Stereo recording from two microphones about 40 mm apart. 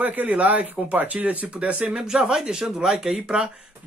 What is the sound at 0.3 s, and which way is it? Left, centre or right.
Speech, right.